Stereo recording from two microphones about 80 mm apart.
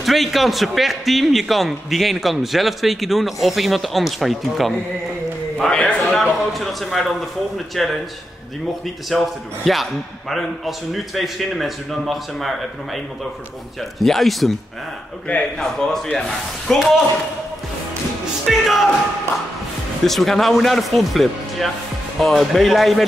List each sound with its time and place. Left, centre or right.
0.0 s a man's voice: centre
5.6 s a man's voice: centre
9.1 s a man's voice: centre
15.6 s a man's voice: centre
18.4 s a man's voice: centre
20.1 s a man's voice: centre